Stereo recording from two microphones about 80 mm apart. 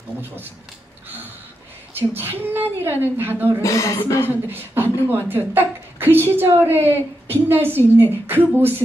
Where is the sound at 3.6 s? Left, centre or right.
Left.